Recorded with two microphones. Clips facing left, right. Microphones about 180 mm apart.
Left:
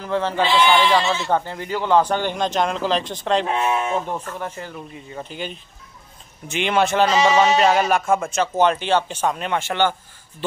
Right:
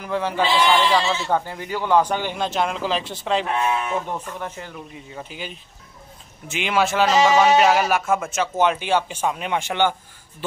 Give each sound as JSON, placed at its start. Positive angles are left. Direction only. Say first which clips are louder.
{"t": 0.0, "sound": "speech", "louder": "left 1 dB", "side_deg": -10}
{"t": 3.4, "sound": "speech", "louder": "left 2 dB", "side_deg": 25}
{"t": 4.3, "sound": "speech", "louder": "left 2 dB", "side_deg": -15}